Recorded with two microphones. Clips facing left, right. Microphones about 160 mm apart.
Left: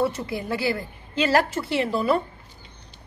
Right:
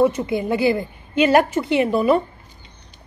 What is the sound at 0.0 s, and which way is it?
Speech, 20° right (ahead or behind).